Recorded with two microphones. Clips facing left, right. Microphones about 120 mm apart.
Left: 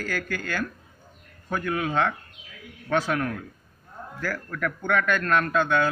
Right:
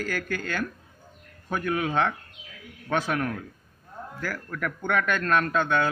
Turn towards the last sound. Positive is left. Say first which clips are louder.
# left 1 dB
turn(degrees=-20)  # may be behind; listen again after turning